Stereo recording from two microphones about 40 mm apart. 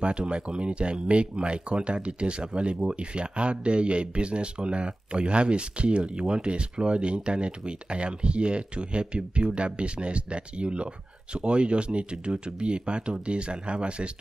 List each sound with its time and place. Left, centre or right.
0.0 s speech: right